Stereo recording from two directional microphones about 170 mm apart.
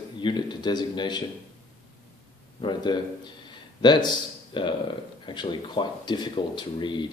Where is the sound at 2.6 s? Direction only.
25° left (ahead or behind).